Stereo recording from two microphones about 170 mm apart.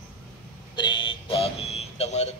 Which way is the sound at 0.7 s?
25° left (ahead or behind).